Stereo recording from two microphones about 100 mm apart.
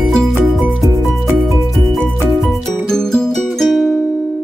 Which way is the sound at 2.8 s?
5° left (ahead or behind).